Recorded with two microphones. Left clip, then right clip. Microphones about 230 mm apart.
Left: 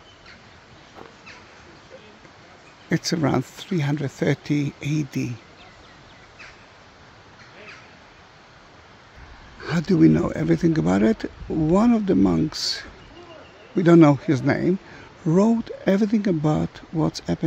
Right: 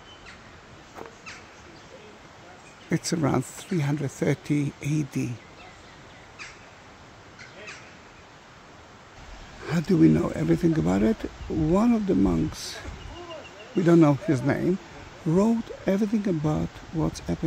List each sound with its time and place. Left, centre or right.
2.9 s speech: centre
9.6 s speech: centre